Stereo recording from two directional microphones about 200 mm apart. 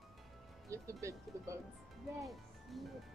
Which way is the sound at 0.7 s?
15° right (ahead or behind).